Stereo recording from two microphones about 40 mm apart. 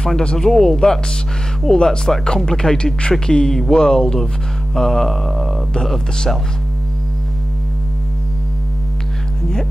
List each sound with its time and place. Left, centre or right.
0.0 s speech: centre